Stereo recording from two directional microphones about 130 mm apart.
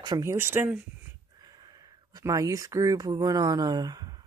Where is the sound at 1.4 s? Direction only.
30° right (ahead or behind).